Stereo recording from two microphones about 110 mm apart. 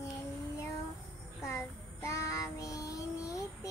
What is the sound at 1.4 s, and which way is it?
Child singing, 25° left (ahead or behind).